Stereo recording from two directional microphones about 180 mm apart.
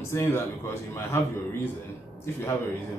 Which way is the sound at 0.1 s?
15° left (ahead or behind).